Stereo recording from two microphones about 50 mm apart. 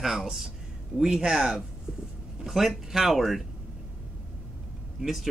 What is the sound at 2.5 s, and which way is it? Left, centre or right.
Speech, centre.